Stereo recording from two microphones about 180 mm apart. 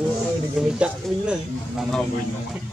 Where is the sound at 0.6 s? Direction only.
5° right (ahead or behind).